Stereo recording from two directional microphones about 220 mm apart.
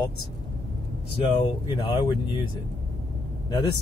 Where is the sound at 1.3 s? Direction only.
20° left (ahead or behind).